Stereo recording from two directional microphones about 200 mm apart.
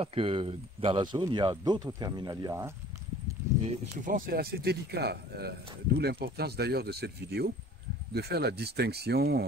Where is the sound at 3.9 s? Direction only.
40° right (ahead or behind).